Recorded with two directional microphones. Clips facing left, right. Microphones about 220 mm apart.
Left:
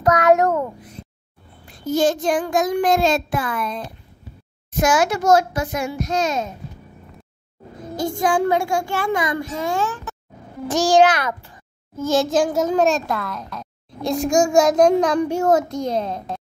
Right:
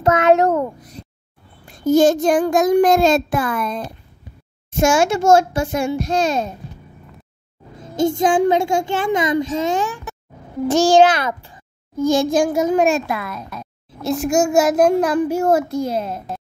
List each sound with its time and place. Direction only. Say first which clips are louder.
0.0 s a child's voice: right 2 dB; 25° right (ahead or behind)
0.7 s a child's voice: right 1 dB; 40° right (ahead or behind)
4.7 s a child's voice: right 3 dB; 25° right (ahead or behind)
7.9 s a child's voice: right 4 dB; 25° right (ahead or behind)
10.7 s a child's voice: right 3 dB; 25° right (ahead or behind)
12.0 s a child's voice: right 2 dB; 15° right (ahead or behind)